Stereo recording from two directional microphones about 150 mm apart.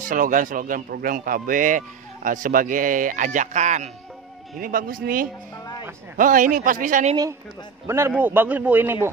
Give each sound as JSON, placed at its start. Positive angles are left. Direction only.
{"t": 0.1, "sound": "a man's voice", "side_deg": -60}
{"t": 4.6, "sound": "a man's voice", "side_deg": -70}
{"t": 7.8, "sound": "a man's voice", "side_deg": -15}